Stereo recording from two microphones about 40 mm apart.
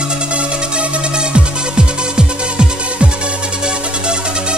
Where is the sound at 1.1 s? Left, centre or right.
Right.